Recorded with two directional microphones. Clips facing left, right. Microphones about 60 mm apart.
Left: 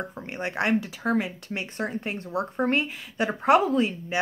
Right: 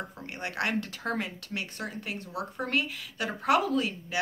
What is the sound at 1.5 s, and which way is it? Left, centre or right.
Speech, left.